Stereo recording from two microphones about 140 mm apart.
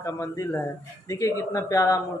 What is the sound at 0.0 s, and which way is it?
A man's voice, 20° left (ahead or behind).